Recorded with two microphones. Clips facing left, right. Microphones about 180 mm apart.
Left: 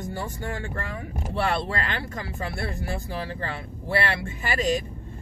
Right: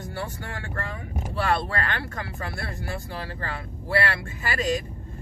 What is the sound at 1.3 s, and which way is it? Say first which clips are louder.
Speech: even; 25° left (ahead or behind).